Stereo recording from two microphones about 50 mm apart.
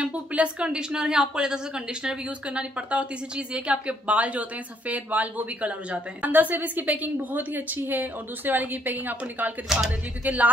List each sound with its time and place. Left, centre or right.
0.0 s a woman's voice: right
9.7 s speech: centre
10.2 s a woman's voice: right